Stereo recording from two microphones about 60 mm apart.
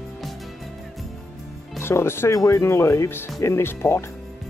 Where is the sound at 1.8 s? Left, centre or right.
Left.